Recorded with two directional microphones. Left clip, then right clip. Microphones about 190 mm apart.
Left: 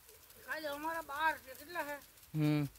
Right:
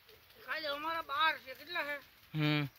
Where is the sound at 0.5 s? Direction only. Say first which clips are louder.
Right 2 dB; 60° left (ahead or behind).